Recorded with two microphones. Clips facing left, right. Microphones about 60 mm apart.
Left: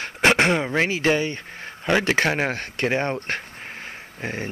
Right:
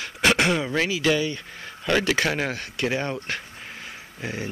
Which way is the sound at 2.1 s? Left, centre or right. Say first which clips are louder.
Left 3 dB; left.